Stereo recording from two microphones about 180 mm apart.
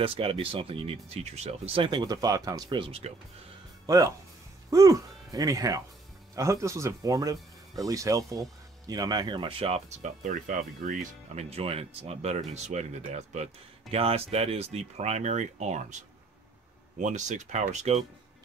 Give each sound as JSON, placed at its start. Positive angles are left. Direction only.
{"t": 0.0, "sound": "speech", "side_deg": -30}
{"t": 3.8, "sound": "speech", "side_deg": -20}
{"t": 17.0, "sound": "speech", "side_deg": -40}